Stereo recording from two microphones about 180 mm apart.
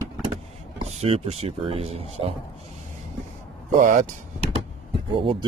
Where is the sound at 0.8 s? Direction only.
35° right (ahead or behind).